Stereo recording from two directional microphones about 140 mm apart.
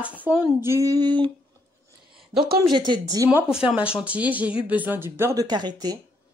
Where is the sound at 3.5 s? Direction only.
5° right (ahead or behind); by 5.4 s 20° right (ahead or behind).